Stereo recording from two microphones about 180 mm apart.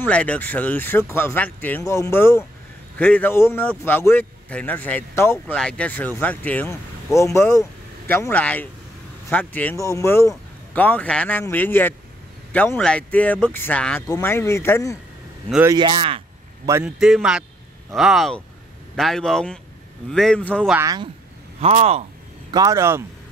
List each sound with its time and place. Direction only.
0.0 s speech: 5° left (ahead or behind)
15.7 s speech: 25° right (ahead or behind)
16.8 s speech: 5° right (ahead or behind)
20.7 s speech: 20° right (ahead or behind)
21.5 s speech: 35° right (ahead or behind)
22.5 s speech: 20° right (ahead or behind)